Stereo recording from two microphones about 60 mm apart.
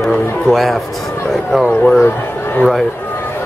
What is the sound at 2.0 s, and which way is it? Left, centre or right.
Speech, left.